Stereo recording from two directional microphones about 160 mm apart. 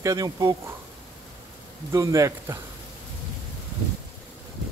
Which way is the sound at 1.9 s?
20° right (ahead or behind).